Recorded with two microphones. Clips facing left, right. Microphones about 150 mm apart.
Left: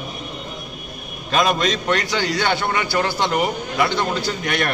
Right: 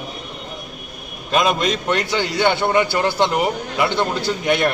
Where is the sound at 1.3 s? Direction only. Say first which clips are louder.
Right 1 dB; 15° right (ahead or behind).